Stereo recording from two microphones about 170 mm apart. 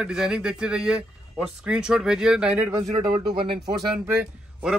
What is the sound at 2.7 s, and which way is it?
Speech, 20° right (ahead or behind).